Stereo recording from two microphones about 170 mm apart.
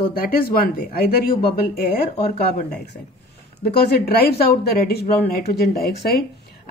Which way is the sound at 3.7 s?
70° left (ahead or behind).